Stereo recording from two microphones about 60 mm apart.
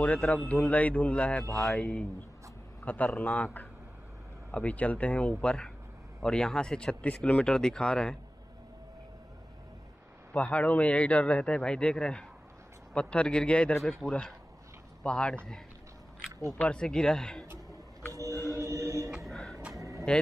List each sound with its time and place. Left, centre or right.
0.0 s a man's voice: left
4.5 s a man's voice: left
10.3 s a man's voice: left
14.0 s speech: centre
15.0 s speech: centre
18.3 s music: left
18.6 s music: right
19.0 s a sound: centre
19.8 s vehicle: right